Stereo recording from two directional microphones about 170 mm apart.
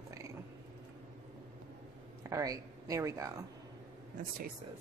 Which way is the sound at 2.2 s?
20° right (ahead or behind).